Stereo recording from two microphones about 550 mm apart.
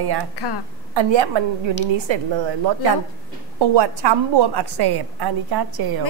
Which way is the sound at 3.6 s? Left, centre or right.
Right.